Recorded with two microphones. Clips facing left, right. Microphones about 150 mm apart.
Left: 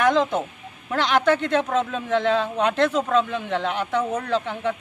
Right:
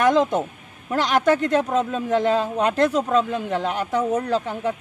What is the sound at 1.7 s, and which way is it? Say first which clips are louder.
Speech: right 2 dB; 5° right (ahead or behind).